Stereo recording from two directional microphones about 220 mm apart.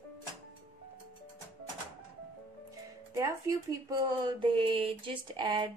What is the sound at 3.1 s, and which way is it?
Speech, 15° right (ahead or behind).